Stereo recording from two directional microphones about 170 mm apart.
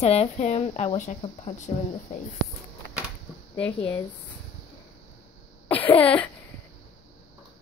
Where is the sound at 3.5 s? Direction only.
10° left (ahead or behind).